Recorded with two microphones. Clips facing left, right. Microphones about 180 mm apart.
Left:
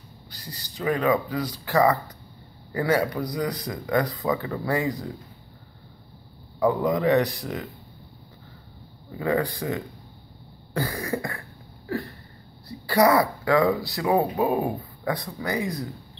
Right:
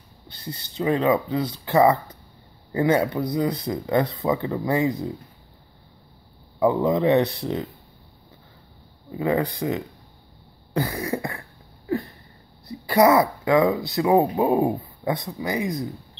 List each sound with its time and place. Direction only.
0.3 s speech: 25° right (ahead or behind)
6.6 s speech: 25° right (ahead or behind)
9.1 s speech: 20° right (ahead or behind)
10.7 s cough: 20° right (ahead or behind)
11.9 s a sound: 20° right (ahead or behind)
12.6 s speech: 20° right (ahead or behind)